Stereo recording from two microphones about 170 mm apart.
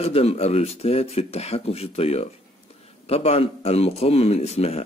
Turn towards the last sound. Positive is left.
turn(degrees=35)  # may be behind; listen again after turning